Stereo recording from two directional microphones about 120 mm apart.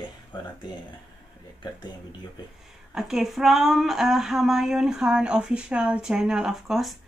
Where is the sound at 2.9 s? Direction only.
5° right (ahead or behind).